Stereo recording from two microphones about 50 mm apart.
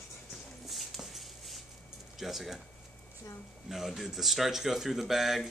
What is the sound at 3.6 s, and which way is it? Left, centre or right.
Speech, centre.